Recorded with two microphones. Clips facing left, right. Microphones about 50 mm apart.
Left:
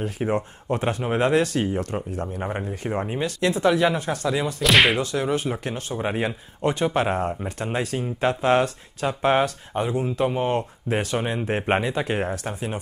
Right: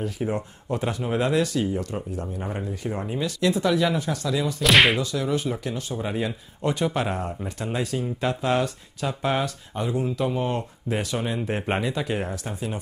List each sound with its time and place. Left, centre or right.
0.0 s speech: left
4.6 s whip: centre
5.0 s speech: left
6.8 s speech: left
11.1 s speech: left